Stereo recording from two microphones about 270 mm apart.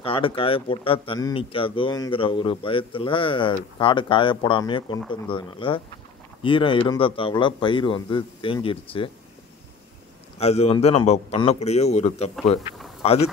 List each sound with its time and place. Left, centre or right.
0.0 s a man's voice: centre
10.4 s a man's voice: left